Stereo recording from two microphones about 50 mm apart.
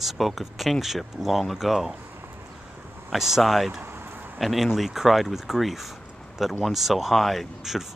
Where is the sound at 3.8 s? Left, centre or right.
Right.